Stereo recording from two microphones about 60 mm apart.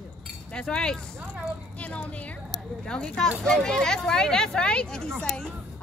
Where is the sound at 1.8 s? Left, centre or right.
Left.